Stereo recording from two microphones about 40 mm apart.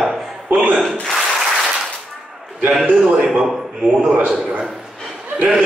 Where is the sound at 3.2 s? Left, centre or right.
Centre.